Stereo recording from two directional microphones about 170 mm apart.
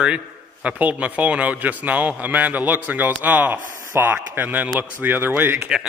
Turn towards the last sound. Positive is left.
turn(degrees=-10)  # may be behind; listen again after turning